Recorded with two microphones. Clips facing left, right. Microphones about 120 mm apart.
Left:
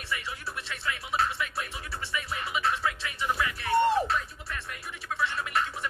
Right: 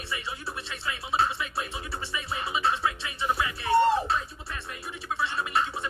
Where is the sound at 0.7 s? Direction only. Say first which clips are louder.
Right 1 dB; 25° right (ahead or behind).